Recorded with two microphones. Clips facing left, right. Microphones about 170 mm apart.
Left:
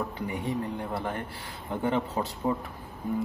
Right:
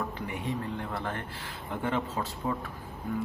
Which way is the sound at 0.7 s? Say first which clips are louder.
Left 2 dB; 15° left (ahead or behind).